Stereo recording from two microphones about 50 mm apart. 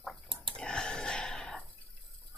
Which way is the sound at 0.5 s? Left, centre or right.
Centre.